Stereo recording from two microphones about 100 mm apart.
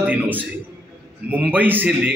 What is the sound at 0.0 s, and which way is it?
A man's voice, 15° right (ahead or behind).